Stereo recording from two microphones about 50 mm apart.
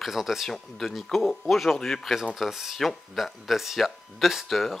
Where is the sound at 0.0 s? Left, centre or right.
Centre.